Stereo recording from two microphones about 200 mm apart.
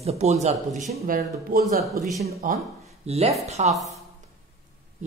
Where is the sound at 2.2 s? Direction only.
30° right (ahead or behind).